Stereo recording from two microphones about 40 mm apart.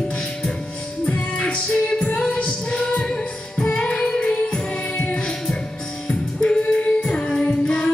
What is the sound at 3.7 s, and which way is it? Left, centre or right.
Child singing, left.